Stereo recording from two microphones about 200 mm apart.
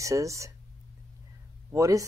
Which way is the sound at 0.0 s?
15° right (ahead or behind).